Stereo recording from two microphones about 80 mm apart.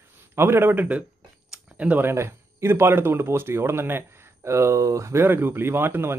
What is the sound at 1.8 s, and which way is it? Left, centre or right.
Speech, centre.